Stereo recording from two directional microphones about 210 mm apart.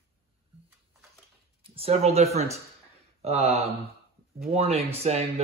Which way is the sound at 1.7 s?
30° right (ahead or behind).